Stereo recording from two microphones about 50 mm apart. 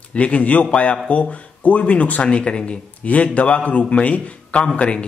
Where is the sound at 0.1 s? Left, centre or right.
Left.